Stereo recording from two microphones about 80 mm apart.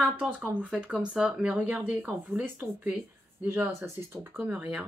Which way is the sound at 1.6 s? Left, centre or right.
Centre.